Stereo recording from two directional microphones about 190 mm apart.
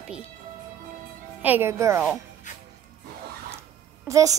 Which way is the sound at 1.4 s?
10° right (ahead or behind).